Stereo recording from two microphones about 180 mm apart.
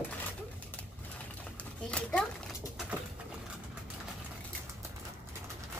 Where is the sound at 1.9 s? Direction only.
5° left (ahead or behind).